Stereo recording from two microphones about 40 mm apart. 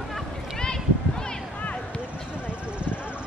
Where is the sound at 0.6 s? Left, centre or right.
Centre.